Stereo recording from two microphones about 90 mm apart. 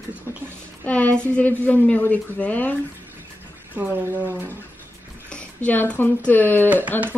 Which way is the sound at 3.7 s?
20° right (ahead or behind).